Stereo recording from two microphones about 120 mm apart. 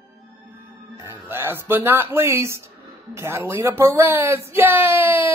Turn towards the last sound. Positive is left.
turn(degrees=-20)  # may be behind; listen again after turning